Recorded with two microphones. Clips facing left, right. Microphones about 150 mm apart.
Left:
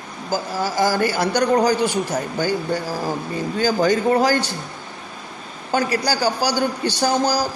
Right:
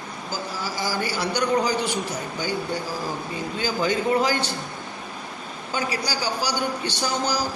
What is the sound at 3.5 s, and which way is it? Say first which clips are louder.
Speech: left 6 dB; 45° left (ahead or behind).